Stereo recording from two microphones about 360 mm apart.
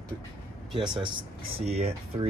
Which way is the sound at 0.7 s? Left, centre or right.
Centre.